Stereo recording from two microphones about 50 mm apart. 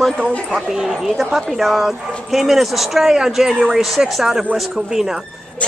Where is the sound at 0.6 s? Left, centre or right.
Centre.